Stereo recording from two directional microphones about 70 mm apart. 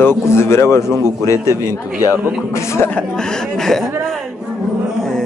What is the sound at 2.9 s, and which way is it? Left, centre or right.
A man's voice, centre.